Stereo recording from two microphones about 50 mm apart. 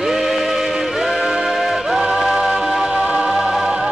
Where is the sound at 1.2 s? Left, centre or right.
Centre.